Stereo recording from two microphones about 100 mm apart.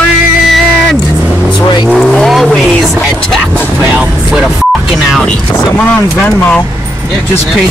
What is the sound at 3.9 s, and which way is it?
Speech, 10° right (ahead or behind).